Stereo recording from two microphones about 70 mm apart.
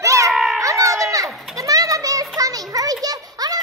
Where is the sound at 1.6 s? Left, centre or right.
Right.